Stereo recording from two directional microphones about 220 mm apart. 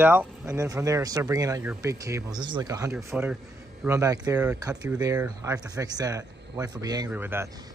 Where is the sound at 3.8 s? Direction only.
15° right (ahead or behind).